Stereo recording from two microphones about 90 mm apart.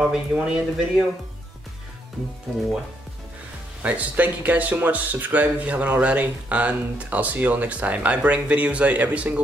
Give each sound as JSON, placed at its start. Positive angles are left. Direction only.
{"t": 0.1, "sound": "speech", "side_deg": -10}
{"t": 3.8, "sound": "speech", "side_deg": -15}